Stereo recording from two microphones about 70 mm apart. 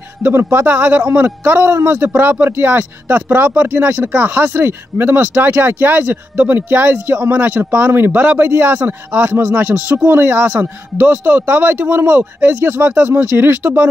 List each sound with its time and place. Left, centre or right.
0.2 s speech: right
2.0 s speech: right